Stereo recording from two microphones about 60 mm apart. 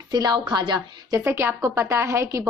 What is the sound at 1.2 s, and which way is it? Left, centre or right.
Speech, right.